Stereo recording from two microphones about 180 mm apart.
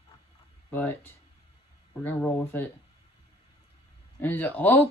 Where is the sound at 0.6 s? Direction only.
10° left (ahead or behind).